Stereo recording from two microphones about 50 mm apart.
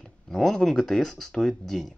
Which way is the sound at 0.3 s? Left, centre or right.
Centre.